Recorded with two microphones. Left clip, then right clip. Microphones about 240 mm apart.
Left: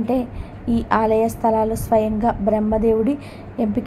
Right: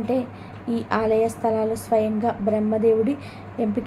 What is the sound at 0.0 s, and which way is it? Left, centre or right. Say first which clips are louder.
A woman's voice: left 2 dB; centre.